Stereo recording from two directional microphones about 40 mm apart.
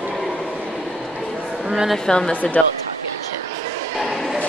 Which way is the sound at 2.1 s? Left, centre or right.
Left.